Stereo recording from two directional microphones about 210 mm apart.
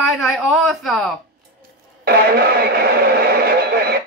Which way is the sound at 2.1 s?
50° right (ahead or behind).